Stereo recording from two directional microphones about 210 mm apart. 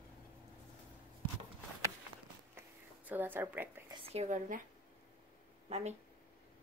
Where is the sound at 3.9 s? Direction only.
30° right (ahead or behind).